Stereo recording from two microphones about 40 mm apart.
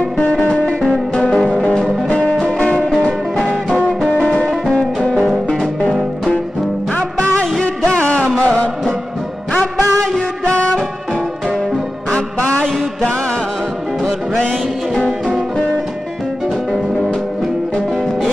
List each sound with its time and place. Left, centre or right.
0.8 s music: left
4.2 s music: centre
7.0 s music: left
7.6 s music: left
9.9 s music: centre
12.1 s music: left